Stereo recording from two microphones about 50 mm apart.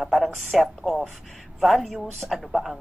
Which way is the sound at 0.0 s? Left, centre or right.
Centre.